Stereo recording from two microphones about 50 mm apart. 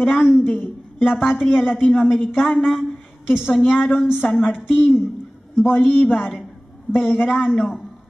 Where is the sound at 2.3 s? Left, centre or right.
Left.